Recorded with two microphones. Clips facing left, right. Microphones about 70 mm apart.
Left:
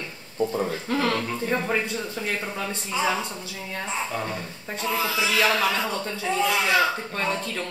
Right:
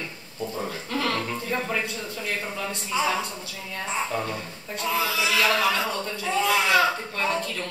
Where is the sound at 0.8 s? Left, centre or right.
Left.